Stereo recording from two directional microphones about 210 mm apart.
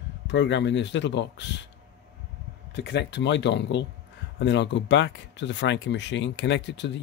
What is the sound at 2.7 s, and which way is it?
Speech, 55° left (ahead or behind).